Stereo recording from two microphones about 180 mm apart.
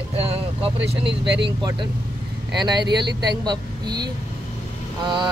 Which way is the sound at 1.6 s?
25° right (ahead or behind).